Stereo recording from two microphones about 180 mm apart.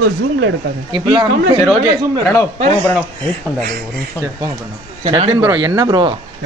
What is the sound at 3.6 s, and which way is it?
Speech, 60° right (ahead or behind).